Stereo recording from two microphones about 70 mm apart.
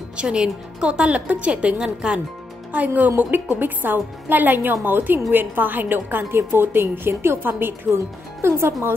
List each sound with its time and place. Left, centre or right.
0.2 s a woman's voice: centre; by 8.7 s right